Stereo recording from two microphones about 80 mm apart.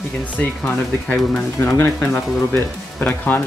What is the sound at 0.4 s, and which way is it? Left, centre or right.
Speech, centre.